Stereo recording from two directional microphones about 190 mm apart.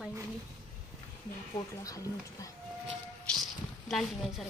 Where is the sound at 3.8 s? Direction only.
Centre (ahead or behind).